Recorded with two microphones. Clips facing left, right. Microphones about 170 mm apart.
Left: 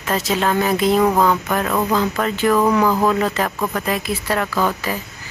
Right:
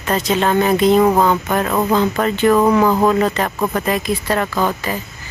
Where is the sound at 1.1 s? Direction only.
20° right (ahead or behind).